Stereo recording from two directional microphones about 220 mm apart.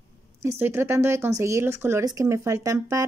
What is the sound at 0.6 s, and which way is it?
Speech, 10° right (ahead or behind).